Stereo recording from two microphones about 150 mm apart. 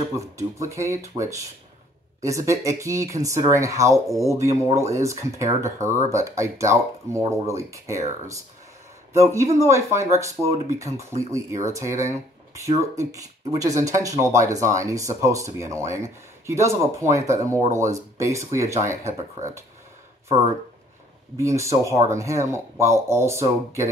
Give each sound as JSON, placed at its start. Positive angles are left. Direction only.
{"t": 0.1, "sound": "speech", "side_deg": -20}
{"t": 9.1, "sound": "speech", "side_deg": -20}
{"t": 21.4, "sound": "speech", "side_deg": -20}